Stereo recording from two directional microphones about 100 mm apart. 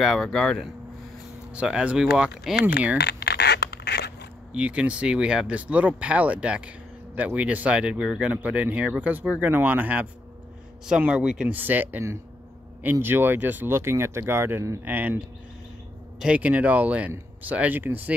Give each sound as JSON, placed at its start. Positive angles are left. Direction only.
{"t": 0.0, "sound": "speech", "side_deg": 0}
{"t": 1.5, "sound": "speech", "side_deg": -10}
{"t": 4.5, "sound": "speech", "side_deg": -10}
{"t": 14.9, "sound": "speech", "side_deg": -20}
{"t": 16.2, "sound": "speech", "side_deg": -10}